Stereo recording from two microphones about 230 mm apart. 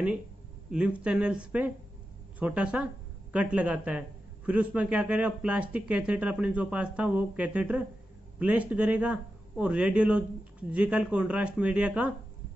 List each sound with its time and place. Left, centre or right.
0.7 s speech: centre